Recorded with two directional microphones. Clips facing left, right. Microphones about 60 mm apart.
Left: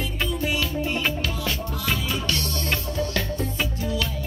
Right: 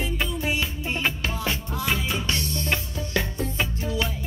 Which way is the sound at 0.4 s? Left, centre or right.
Right.